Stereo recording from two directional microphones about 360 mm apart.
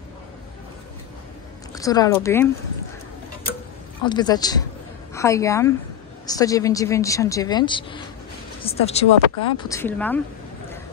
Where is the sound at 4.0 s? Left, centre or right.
Centre.